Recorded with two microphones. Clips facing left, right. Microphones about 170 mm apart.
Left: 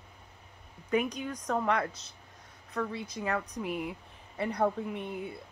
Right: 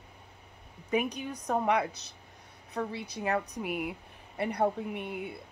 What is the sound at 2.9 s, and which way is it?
Speech, 65° right (ahead or behind).